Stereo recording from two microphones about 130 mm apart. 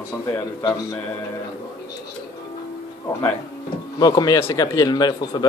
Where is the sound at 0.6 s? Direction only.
30° left (ahead or behind).